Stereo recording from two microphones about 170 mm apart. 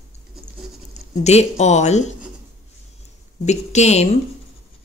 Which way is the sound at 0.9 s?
40° left (ahead or behind).